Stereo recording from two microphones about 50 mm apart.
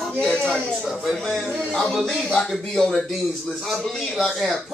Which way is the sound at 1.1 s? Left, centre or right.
Centre.